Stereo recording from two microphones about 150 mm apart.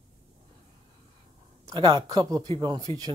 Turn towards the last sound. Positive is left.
turn(degrees=-25)  # may be behind; listen again after turning